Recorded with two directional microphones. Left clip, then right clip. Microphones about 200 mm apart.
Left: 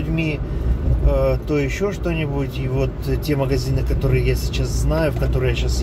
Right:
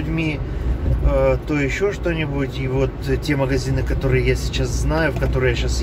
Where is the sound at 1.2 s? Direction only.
15° left (ahead or behind).